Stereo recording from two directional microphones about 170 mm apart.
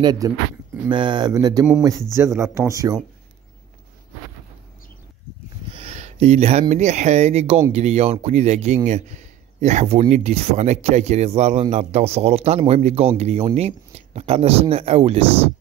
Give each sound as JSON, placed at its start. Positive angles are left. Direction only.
{"t": 0.0, "sound": "speech", "side_deg": -25}
{"t": 5.7, "sound": "a sound", "side_deg": -35}
{"t": 6.7, "sound": "speech", "side_deg": -40}